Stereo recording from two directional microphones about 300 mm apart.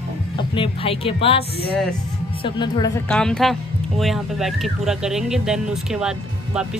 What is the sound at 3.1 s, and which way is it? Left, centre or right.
Speech, centre.